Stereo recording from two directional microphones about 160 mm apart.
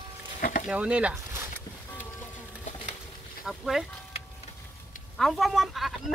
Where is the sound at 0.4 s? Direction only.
60° left (ahead or behind).